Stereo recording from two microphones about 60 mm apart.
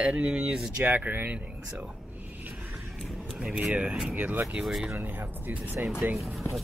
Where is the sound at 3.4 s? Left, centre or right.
Centre.